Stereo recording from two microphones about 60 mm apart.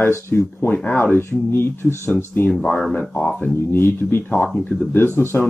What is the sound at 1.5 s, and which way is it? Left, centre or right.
Speech, left.